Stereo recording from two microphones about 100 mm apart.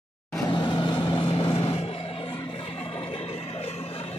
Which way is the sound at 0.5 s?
50° left (ahead or behind).